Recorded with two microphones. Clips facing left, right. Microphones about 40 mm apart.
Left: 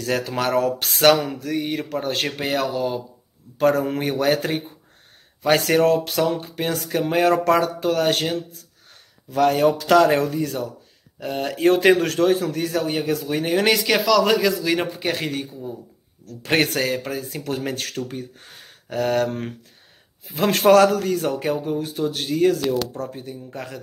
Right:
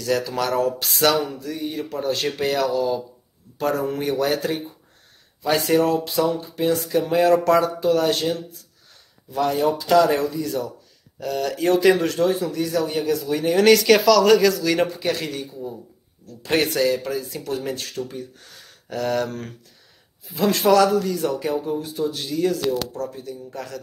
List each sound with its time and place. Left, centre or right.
0.0 s speech: left
2.2 s speech: left
11.1 s speech: left
13.6 s speech: centre
15.0 s speech: left
20.2 s speech: left